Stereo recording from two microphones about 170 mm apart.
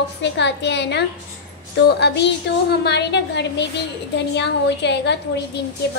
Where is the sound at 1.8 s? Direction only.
75° left (ahead or behind).